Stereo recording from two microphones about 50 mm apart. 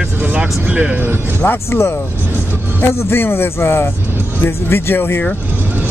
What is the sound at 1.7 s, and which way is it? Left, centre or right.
Speech, left.